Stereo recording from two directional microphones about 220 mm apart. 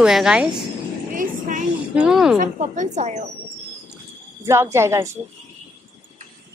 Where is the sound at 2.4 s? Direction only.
35° right (ahead or behind).